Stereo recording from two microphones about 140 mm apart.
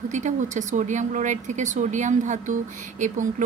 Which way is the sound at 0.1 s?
60° right (ahead or behind).